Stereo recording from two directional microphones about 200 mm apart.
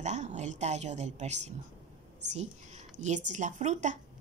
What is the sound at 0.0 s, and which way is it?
A woman's voice, 35° right (ahead or behind).